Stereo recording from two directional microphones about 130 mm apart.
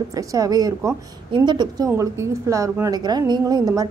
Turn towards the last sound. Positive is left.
turn(degrees=-30)  # may be behind; listen again after turning